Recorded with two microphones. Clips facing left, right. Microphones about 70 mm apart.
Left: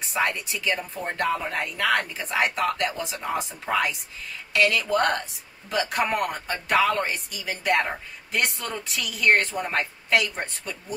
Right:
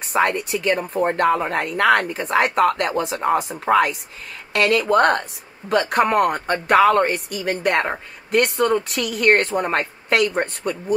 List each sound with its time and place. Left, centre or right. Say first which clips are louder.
0.1 s speech: right 7 dB; right